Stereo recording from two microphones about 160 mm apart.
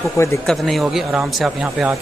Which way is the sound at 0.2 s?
20° left (ahead or behind).